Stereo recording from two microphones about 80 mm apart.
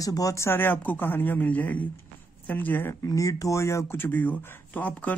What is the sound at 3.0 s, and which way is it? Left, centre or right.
Speech, left.